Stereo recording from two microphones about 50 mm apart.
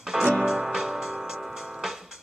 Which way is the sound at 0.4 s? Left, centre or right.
Centre.